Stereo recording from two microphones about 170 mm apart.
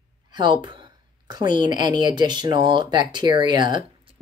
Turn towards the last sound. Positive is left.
turn(degrees=-25)  # may be behind; listen again after turning